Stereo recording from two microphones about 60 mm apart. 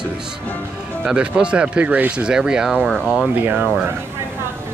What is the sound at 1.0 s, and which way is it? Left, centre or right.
Speech, centre.